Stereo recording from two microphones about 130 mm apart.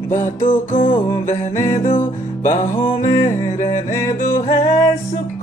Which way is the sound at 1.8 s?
40° left (ahead or behind).